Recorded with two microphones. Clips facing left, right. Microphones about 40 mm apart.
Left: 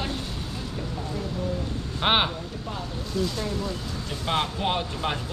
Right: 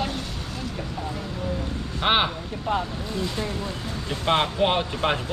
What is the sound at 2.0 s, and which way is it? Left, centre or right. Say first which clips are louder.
Speech: right 1 dB; centre.